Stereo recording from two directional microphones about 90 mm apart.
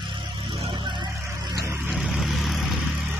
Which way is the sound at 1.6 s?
30° right (ahead or behind).